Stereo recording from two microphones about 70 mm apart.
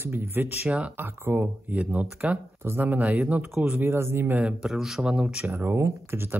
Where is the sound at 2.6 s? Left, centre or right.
Right.